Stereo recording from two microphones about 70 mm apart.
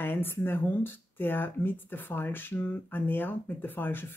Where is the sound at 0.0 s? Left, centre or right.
Left.